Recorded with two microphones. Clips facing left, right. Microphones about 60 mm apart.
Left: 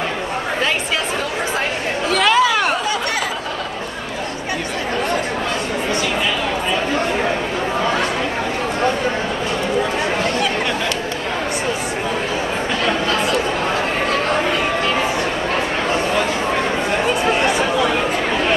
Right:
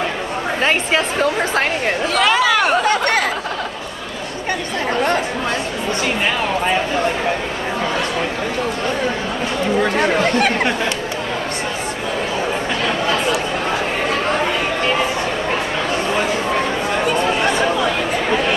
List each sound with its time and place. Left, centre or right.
0.6 s speech: right
2.0 s speech: centre
2.8 s a sound: right